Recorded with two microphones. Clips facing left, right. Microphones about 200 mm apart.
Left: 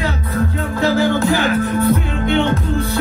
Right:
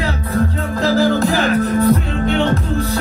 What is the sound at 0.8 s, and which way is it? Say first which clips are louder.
Music: right 1 dB; 35° right (ahead or behind).